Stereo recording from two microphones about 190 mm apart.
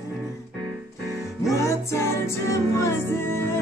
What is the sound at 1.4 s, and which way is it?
Music, 15° left (ahead or behind).